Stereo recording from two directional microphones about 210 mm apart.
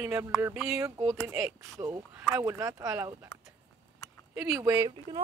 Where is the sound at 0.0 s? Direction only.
10° right (ahead or behind).